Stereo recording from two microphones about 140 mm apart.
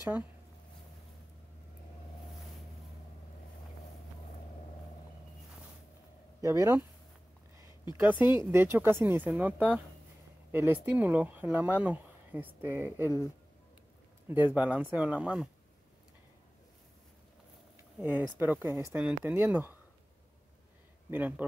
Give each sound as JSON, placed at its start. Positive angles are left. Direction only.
{"t": 6.4, "sound": "speech", "side_deg": -20}
{"t": 8.0, "sound": "speech", "side_deg": -15}
{"t": 14.3, "sound": "speech", "side_deg": -10}
{"t": 18.0, "sound": "speech", "side_deg": -15}
{"t": 18.9, "sound": "speech", "side_deg": -5}
{"t": 21.1, "sound": "speech", "side_deg": -10}